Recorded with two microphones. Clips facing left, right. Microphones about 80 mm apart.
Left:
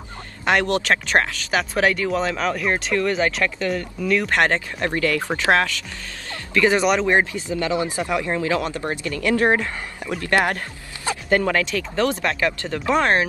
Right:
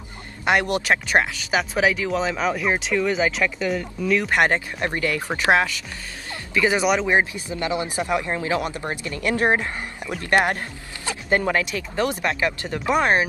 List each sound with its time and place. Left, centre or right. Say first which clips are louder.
0.5 s speech: left 1 dB; centre
7.3 s speech: left 3 dB; centre